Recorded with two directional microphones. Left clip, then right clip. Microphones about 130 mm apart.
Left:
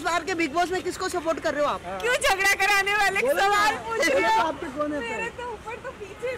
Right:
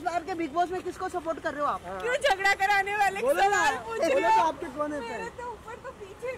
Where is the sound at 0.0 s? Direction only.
35° left (ahead or behind).